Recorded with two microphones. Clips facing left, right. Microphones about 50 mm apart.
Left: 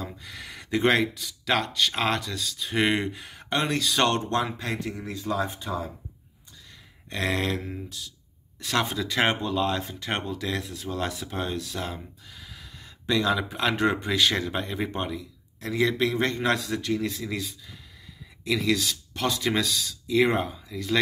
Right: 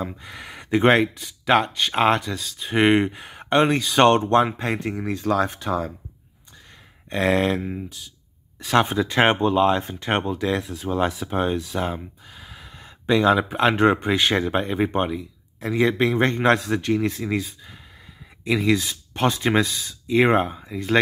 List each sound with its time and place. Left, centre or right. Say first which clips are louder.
0.0 s speech: right 6 dB; right
5.0 s speech: right 8 dB; right
7.1 s speech: right 7 dB; right
8.7 s speech: right 7 dB; right